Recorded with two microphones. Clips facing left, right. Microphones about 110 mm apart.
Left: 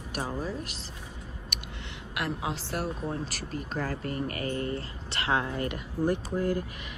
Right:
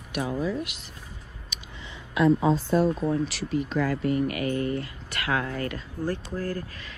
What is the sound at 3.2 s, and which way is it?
Speech, 45° left (ahead or behind).